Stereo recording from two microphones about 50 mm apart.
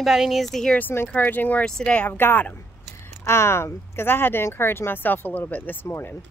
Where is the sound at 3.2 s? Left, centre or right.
Left.